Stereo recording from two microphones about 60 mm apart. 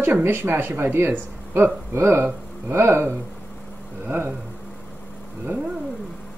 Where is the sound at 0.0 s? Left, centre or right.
Right.